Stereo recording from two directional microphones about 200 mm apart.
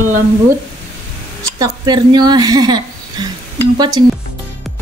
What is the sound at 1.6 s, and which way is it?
A woman's voice, 20° right (ahead or behind).